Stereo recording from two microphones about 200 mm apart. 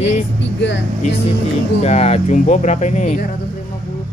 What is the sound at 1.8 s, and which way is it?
Speech, 35° left (ahead or behind).